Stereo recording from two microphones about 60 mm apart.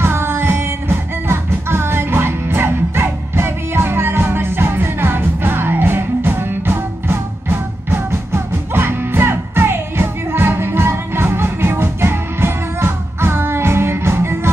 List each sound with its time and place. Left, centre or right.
0.0 s music: right